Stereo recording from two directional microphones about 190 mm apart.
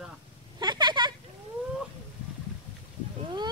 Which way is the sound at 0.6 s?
25° right (ahead or behind).